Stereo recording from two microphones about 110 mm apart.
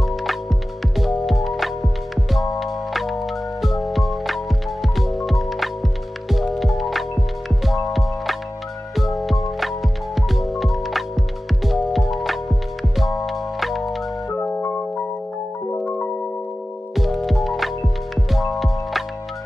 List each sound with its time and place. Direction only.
0.1 s music: centre (ahead or behind)
14.3 s music: 15° left (ahead or behind)
15.7 s music: 15° left (ahead or behind)
16.9 s music: centre (ahead or behind)